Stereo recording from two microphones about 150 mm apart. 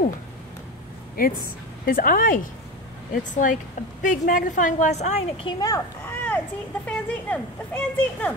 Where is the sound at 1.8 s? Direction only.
70° left (ahead or behind); by 5.4 s 50° left (ahead or behind).